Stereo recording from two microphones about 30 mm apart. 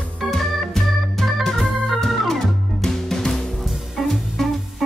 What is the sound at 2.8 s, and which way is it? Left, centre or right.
Music, centre.